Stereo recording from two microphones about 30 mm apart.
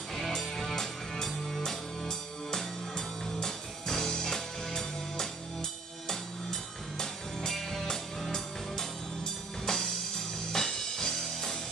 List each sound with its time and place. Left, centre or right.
0.4 s music: centre
2.0 s music: centre